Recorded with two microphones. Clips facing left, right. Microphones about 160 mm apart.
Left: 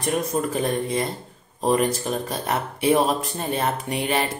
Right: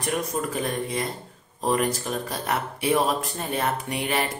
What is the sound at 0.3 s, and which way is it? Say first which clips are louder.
Speech: left 4 dB; 25° left (ahead or behind).